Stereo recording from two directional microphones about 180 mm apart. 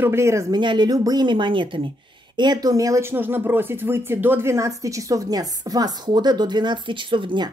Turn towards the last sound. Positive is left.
turn(degrees=-25)  # may be behind; listen again after turning